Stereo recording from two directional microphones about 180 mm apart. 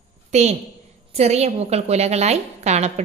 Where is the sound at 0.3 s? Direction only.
40° right (ahead or behind).